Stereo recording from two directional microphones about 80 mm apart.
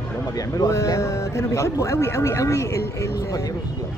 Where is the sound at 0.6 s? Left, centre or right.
Left.